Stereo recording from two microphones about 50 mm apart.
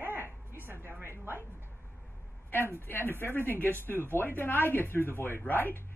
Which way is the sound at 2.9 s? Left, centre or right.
Left.